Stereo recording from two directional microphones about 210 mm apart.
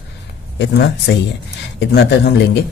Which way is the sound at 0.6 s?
55° left (ahead or behind).